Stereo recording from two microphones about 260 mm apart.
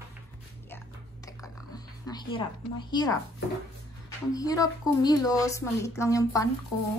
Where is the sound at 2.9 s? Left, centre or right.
Centre.